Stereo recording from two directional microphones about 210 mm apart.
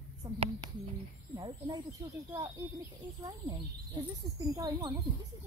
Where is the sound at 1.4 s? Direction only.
20° right (ahead or behind).